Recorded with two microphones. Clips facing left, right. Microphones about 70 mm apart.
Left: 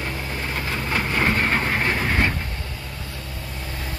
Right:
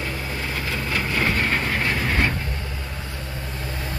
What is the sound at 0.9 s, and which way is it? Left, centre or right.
Vehicle, left.